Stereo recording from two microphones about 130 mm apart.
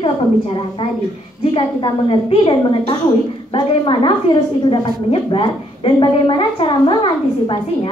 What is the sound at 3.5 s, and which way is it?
A woman's voice, 40° left (ahead or behind).